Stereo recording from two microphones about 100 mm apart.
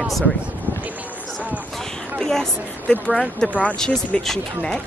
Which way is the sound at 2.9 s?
10° left (ahead or behind).